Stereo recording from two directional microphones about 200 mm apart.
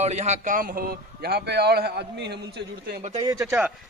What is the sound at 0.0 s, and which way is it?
A man's voice, 35° right (ahead or behind).